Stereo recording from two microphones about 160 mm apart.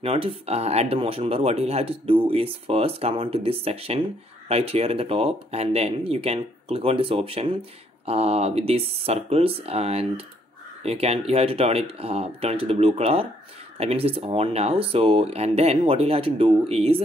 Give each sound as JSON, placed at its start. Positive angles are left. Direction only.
{"t": 0.0, "sound": "speech", "side_deg": -35}